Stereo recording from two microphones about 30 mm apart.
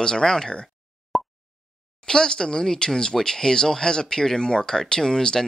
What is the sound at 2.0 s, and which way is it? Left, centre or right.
Speech, left.